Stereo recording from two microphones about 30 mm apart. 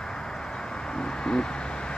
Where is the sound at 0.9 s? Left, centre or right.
Left.